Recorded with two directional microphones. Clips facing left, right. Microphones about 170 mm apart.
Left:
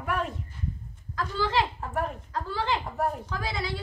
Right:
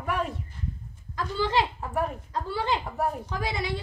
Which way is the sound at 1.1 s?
15° right (ahead or behind).